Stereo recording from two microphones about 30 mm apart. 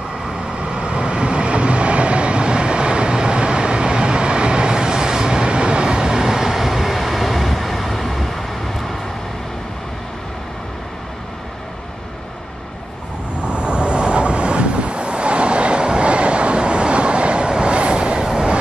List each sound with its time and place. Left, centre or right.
0.6 s train: right; by 8.9 s centre
13.4 s vehicle: right